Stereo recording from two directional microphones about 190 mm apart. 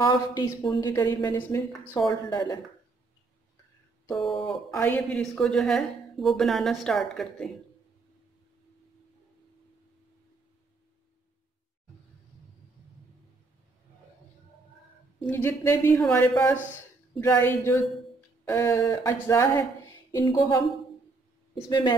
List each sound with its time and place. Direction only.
0.0 s speech: 20° left (ahead or behind)
2.0 s speech: 25° left (ahead or behind)
4.1 s speech: centre (ahead or behind)
15.2 s speech: 10° left (ahead or behind)
21.6 s speech: 25° left (ahead or behind)